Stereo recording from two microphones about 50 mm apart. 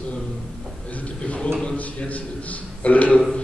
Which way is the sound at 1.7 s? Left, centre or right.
Left.